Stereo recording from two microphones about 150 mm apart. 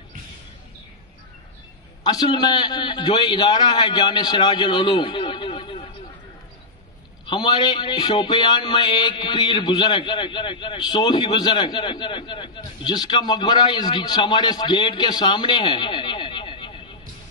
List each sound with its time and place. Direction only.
2.0 s a man's voice: 25° left (ahead or behind)
7.2 s a man's voice: 30° left (ahead or behind)